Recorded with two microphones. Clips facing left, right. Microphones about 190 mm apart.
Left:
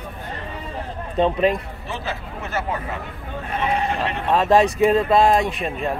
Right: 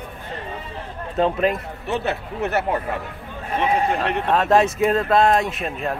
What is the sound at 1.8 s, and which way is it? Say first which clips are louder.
Speech: right 9 dB; 65° right (ahead or behind).